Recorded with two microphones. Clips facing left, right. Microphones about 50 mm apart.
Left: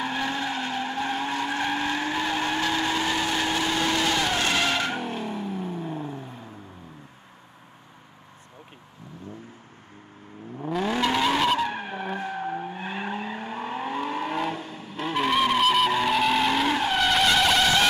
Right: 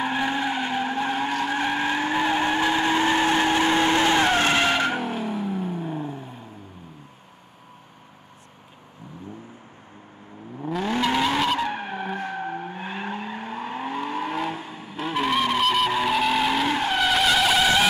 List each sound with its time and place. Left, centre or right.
0.0 s skidding: centre
1.4 s vehicle: centre
5.0 s vehicle: centre
10.6 s vehicle: centre
12.2 s vehicle: centre